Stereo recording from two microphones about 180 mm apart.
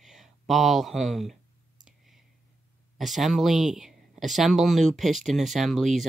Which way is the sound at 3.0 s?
Centre (ahead or behind).